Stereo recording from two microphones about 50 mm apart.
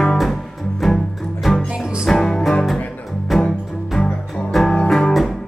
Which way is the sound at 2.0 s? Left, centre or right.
Centre.